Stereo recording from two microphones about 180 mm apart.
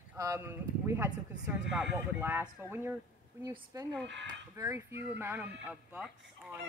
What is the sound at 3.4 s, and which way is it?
Speech, 20° right (ahead or behind).